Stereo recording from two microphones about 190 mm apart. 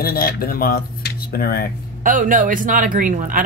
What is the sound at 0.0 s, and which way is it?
Speech, 50° left (ahead or behind).